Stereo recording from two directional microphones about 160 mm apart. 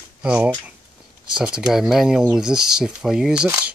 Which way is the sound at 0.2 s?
5° right (ahead or behind).